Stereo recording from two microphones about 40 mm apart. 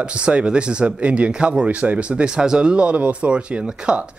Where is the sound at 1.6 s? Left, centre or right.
Right.